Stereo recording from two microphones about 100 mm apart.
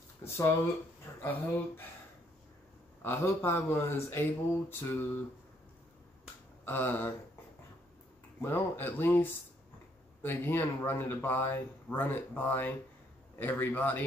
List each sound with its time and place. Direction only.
0.4 s speech: 35° left (ahead or behind)
1.2 s speech: 20° left (ahead or behind)
3.0 s speech: 25° left (ahead or behind)
6.6 s speech: 20° left (ahead or behind)
8.4 s speech: 20° left (ahead or behind)